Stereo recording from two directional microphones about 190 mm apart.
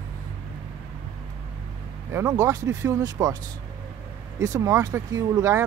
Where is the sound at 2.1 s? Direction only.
15° right (ahead or behind).